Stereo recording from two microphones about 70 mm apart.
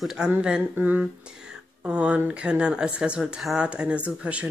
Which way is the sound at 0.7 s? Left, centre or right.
Right.